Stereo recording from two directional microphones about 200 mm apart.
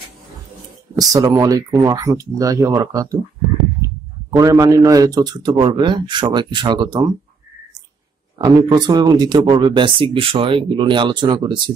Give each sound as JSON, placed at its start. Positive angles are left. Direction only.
{"t": 0.9, "sound": "speech", "side_deg": -20}
{"t": 4.3, "sound": "speech", "side_deg": -20}
{"t": 8.4, "sound": "speech", "side_deg": -20}